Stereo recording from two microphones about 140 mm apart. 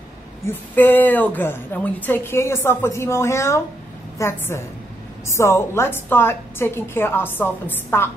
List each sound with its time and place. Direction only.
0.5 s a woman's voice: 15° left (ahead or behind)